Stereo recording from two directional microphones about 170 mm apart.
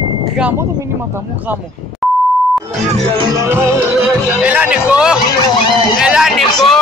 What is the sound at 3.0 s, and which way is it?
Speech, 30° right (ahead or behind).